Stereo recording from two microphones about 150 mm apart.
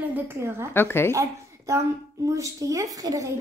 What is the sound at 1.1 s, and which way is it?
Speech, 20° right (ahead or behind).